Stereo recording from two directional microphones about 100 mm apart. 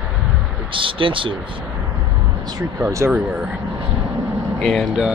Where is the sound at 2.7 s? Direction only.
30° right (ahead or behind).